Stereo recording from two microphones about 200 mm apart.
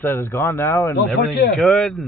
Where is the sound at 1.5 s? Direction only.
5° left (ahead or behind).